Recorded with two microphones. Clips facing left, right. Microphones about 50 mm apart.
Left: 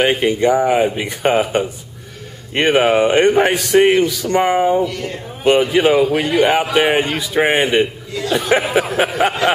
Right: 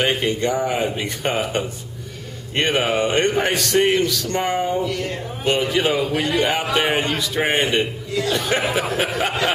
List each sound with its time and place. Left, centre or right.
0.0 s a man's voice: centre
4.8 s speech: centre
5.4 s a man's voice: centre